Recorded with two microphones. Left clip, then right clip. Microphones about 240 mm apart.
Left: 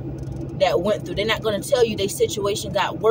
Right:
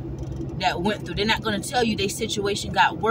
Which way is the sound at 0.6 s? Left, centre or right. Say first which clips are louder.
Left 5 dB; left.